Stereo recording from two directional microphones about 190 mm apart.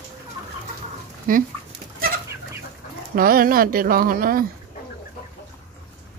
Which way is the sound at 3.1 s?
50° right (ahead or behind).